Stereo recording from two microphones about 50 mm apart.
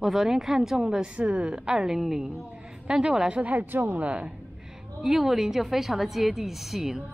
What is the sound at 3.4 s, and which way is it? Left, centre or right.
Speech, right.